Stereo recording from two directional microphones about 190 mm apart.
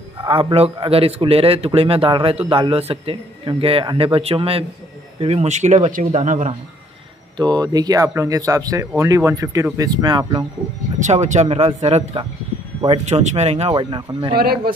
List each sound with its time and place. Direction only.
0.2 s a man's voice: 25° right (ahead or behind)
7.3 s a man's voice: 20° right (ahead or behind)
11.0 s speech: 40° right (ahead or behind)